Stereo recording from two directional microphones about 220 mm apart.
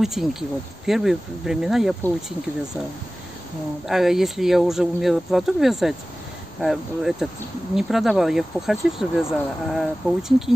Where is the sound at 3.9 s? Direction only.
Centre (ahead or behind).